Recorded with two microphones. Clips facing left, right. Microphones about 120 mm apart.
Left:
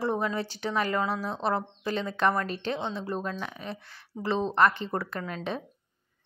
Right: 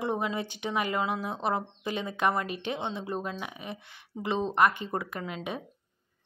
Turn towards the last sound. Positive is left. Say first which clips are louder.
# left 2 dB
turn(degrees=-15)  # may be behind; listen again after turning